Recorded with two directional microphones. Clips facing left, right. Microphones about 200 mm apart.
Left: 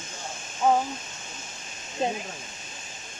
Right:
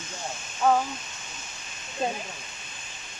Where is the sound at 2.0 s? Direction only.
20° left (ahead or behind).